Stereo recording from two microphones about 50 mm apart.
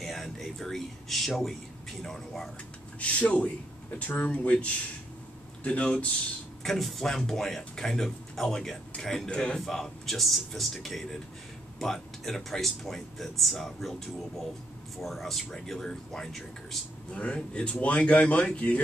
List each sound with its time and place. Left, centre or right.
0.0 s speech: centre
3.0 s speech: left
6.6 s speech: centre
9.3 s speech: centre
9.6 s speech: centre
17.1 s speech: left